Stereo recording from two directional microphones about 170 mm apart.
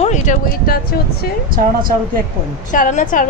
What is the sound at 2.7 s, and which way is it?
Speech, 50° left (ahead or behind).